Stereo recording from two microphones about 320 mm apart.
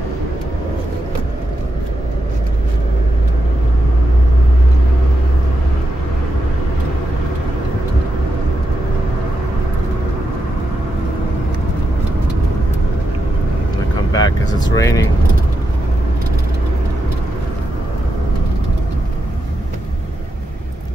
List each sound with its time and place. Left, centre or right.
14.1 s vehicle: centre